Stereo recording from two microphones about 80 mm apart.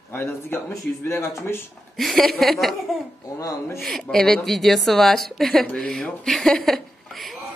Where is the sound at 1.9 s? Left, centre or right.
Centre.